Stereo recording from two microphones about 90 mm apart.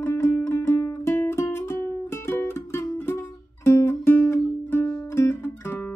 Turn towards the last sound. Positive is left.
turn(degrees=25)  # may be behind; listen again after turning